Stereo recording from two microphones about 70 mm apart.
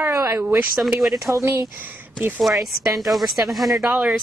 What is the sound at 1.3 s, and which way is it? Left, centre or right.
Speech, right.